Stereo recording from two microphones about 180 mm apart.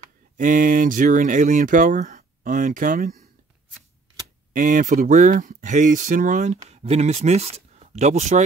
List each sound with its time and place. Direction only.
0.4 s speech: 50° right (ahead or behind)
4.6 s speech: 45° right (ahead or behind)